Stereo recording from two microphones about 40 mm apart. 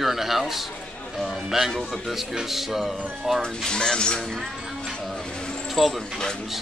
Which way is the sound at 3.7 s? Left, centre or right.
Left.